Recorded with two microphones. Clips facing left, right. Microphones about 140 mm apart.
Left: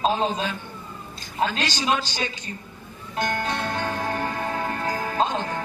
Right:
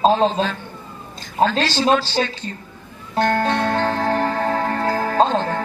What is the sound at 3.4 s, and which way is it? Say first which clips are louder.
Music: right 8 dB; 60° right (ahead or behind).